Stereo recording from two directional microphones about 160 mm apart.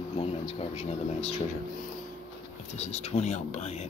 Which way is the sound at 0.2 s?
40° left (ahead or behind).